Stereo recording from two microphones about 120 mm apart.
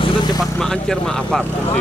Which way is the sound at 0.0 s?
35° left (ahead or behind).